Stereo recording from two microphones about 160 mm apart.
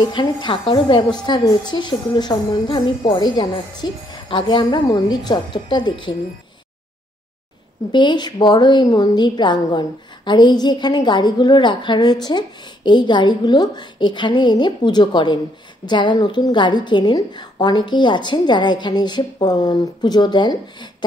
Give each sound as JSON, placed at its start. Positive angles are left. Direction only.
{"t": 0.0, "sound": "a woman's voice", "side_deg": 30}
{"t": 7.9, "sound": "a woman's voice", "side_deg": 30}